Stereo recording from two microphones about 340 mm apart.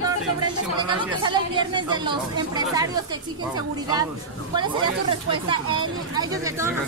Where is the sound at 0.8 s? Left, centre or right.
Centre.